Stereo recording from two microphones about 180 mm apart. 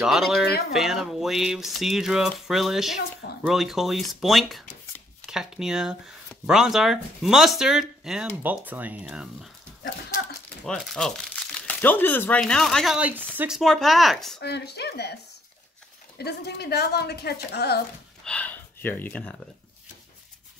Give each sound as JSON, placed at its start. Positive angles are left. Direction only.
{"t": 0.0, "sound": "speech", "side_deg": 0}
{"t": 10.6, "sound": "speech", "side_deg": 0}
{"t": 14.4, "sound": "a woman's voice", "side_deg": 65}
{"t": 16.2, "sound": "a woman's voice", "side_deg": 65}
{"t": 18.2, "sound": "speech", "side_deg": 5}